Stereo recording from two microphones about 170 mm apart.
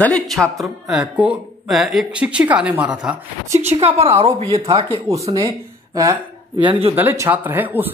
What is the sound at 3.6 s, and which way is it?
Speech, 35° right (ahead or behind).